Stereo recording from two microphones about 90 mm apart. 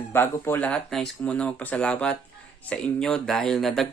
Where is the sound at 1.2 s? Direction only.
15° left (ahead or behind).